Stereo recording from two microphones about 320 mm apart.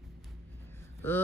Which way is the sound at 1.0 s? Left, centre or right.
Centre.